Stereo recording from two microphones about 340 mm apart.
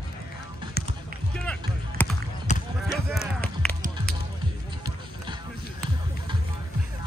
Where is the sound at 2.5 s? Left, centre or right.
Left.